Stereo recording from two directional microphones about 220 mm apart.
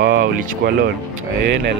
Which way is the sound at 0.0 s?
40° right (ahead or behind).